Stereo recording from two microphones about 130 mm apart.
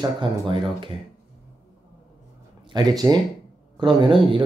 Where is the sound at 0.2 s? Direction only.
40° right (ahead or behind).